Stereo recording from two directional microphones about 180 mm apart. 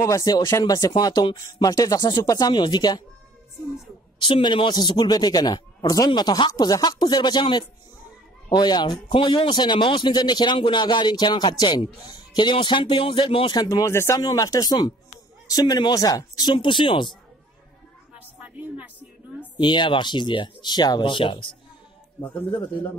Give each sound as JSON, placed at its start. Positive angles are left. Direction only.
{"t": 0.0, "sound": "a man's voice", "side_deg": 20}
{"t": 4.2, "sound": "a man's voice", "side_deg": 25}
{"t": 18.2, "sound": "a sound", "side_deg": -10}
{"t": 19.6, "sound": "a man's voice", "side_deg": 25}